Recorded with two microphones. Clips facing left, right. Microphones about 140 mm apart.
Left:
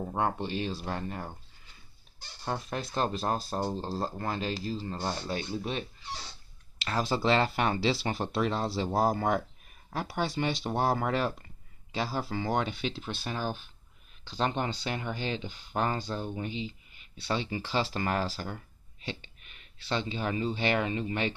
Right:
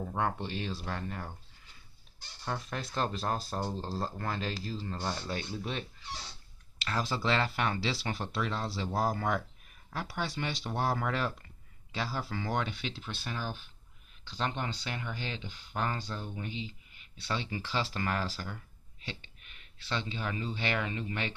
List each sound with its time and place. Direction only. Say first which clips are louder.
0.0 s speech: left 3 dB; 25° left (ahead or behind)
2.4 s speech: left 3 dB; 25° left (ahead or behind)
19.9 s speech: left 4 dB; 20° left (ahead or behind)